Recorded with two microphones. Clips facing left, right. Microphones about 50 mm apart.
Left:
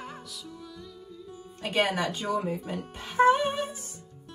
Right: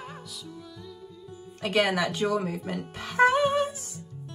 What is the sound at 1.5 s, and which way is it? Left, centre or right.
Music, right.